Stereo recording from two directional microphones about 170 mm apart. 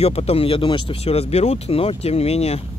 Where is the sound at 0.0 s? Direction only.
35° left (ahead or behind).